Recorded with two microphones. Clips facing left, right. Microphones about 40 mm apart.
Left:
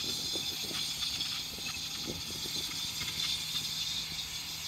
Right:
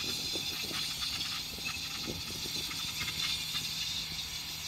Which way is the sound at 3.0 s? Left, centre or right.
Right.